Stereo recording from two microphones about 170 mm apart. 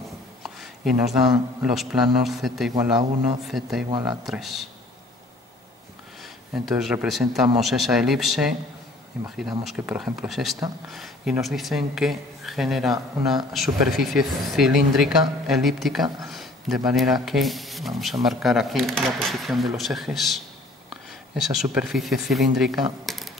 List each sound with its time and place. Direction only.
0.4 s speech: centre (ahead or behind)
2.7 s a man's voice: 20° right (ahead or behind)
3.4 s speech: centre (ahead or behind)
6.2 s speech: centre (ahead or behind)
23.0 s a sound: centre (ahead or behind)